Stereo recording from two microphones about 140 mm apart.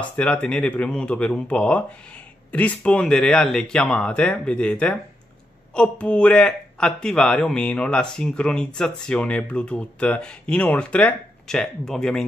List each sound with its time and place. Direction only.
0.1 s speech: 10° left (ahead or behind)